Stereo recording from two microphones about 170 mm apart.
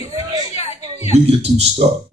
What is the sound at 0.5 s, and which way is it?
Music, 40° left (ahead or behind).